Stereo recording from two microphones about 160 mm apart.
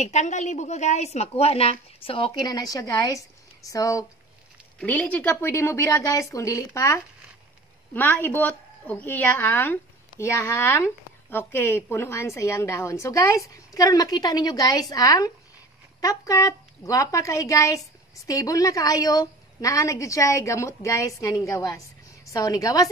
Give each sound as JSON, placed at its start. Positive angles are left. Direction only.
{"t": 0.0, "sound": "a woman's voice", "side_deg": 50}
{"t": 4.7, "sound": "a woman's voice", "side_deg": 10}